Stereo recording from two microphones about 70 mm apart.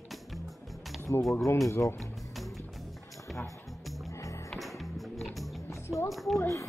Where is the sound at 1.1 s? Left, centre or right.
Left.